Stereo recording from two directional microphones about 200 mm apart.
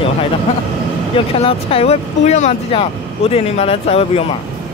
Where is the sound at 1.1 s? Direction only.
30° left (ahead or behind).